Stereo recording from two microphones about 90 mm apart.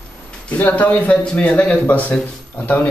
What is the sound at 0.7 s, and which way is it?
Speech, 15° left (ahead or behind).